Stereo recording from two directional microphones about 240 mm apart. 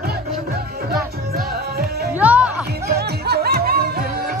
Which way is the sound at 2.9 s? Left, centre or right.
Right.